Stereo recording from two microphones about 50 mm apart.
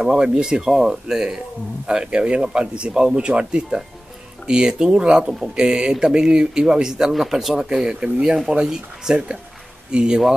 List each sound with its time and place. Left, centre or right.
0.0 s speech: centre